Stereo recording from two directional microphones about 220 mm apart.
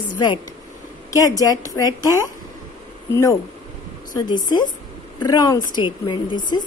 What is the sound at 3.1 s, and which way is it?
Speech, 15° left (ahead or behind).